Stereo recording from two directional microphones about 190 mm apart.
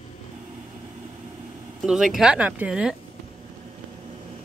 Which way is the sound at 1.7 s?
Centre (ahead or behind).